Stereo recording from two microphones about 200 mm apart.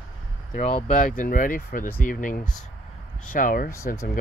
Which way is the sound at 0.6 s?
35° left (ahead or behind).